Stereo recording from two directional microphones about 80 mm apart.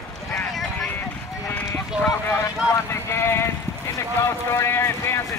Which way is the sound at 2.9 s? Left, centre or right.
Left.